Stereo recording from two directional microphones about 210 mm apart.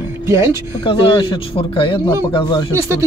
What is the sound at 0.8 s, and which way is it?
A man's voice, 25° left (ahead or behind).